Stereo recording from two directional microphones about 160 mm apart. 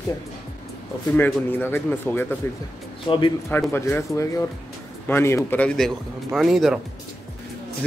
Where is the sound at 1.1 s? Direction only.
10° left (ahead or behind).